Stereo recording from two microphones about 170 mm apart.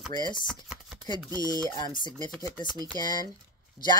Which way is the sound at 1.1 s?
25° right (ahead or behind).